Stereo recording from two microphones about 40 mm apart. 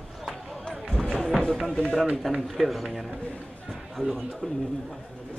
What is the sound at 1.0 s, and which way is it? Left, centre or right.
Music, centre.